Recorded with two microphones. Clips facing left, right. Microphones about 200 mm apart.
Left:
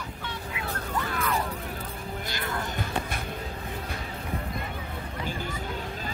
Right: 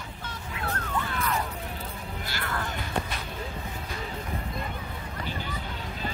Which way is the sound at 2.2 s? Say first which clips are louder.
Left 1 dB; 20° left (ahead or behind).